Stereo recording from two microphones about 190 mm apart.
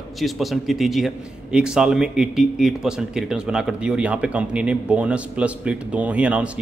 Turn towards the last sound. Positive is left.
turn(degrees=-5)  # may be behind; listen again after turning